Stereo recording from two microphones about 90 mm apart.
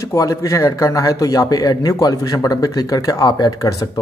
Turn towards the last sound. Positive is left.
turn(degrees=45)  # may be behind; listen again after turning